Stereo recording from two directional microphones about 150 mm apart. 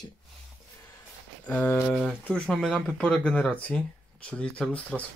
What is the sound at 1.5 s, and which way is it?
Speech, 10° left (ahead or behind).